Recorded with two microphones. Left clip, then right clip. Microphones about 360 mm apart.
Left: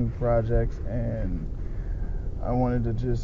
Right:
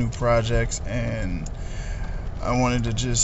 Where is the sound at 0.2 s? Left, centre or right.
Centre.